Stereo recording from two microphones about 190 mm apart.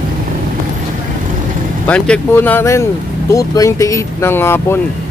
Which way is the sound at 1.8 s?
5° left (ahead or behind).